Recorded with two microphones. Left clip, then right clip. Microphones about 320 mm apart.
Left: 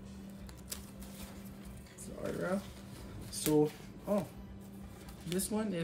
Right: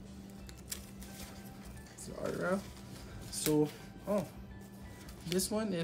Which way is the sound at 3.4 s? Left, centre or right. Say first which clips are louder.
Left 2 dB; centre.